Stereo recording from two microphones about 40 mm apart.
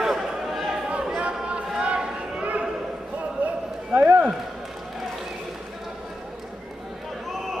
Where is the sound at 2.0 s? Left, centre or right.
Centre.